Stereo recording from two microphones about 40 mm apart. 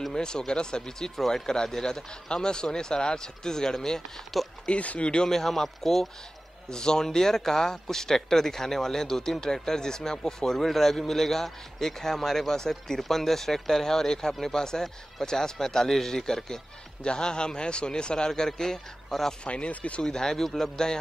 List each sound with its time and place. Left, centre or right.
0.1 s speech: centre
4.6 s a man's voice: left
5.3 s a man's voice: centre
6.7 s a man's voice: centre
19.4 s speech: left
20.0 s speech: centre